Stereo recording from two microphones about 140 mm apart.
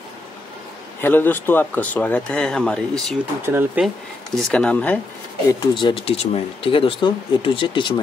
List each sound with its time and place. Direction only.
1.0 s speech: 15° left (ahead or behind)
3.4 s speech: 15° right (ahead or behind)
4.4 s speech: 5° left (ahead or behind)
5.8 s speech: 35° left (ahead or behind)